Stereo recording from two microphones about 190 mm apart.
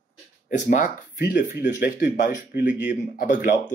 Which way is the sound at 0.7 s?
45° left (ahead or behind).